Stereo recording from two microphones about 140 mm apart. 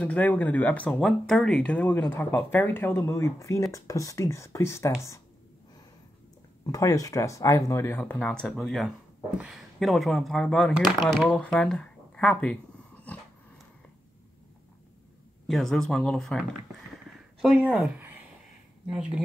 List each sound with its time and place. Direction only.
0.0 s speech: 10° left (ahead or behind)
6.6 s speech: 25° left (ahead or behind); by 12.5 s 10° left (ahead or behind)
15.4 s speech: centre (ahead or behind)